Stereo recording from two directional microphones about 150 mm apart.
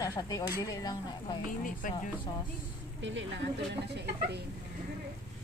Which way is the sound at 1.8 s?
65° left (ahead or behind).